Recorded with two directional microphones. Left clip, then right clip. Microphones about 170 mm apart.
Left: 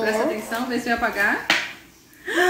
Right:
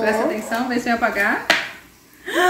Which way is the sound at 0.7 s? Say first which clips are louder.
Right 2 dB; 25° right (ahead or behind).